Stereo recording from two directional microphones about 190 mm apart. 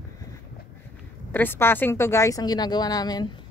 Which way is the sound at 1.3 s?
10° left (ahead or behind).